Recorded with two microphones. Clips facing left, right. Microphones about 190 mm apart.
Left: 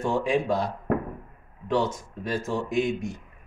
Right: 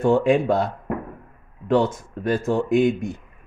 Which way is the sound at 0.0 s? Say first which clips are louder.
Right 7 dB; 55° right (ahead or behind).